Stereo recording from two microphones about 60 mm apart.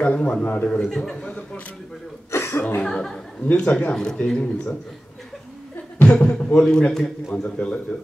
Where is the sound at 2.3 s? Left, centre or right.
Left.